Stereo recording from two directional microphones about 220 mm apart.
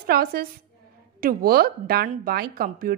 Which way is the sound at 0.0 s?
45° right (ahead or behind).